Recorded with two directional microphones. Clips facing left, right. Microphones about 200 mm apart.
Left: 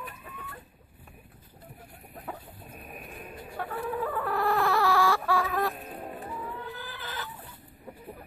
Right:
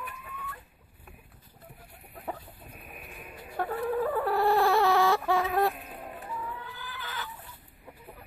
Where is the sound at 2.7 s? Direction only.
40° left (ahead or behind).